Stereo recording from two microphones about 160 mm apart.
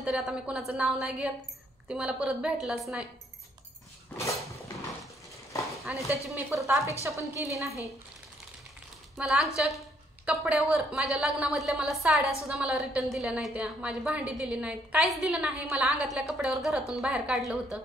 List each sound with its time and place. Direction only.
0.0 s a woman's voice: 5° right (ahead or behind)
5.9 s a woman's voice: 20° left (ahead or behind)
6.5 s a woman's voice: 20° right (ahead or behind)
9.1 s a woman's voice: 5° right (ahead or behind)